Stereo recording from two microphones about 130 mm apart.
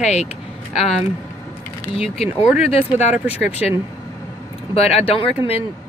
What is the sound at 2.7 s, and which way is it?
Speech, 55° left (ahead or behind).